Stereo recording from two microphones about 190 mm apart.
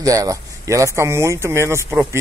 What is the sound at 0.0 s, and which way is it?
Speech, 20° right (ahead or behind).